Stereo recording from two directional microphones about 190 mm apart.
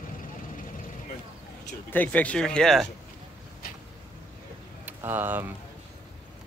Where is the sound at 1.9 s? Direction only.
10° left (ahead or behind).